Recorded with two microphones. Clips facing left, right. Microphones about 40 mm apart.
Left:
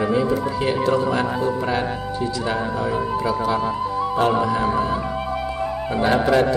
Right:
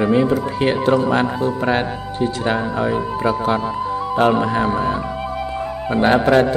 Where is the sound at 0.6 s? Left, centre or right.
Right.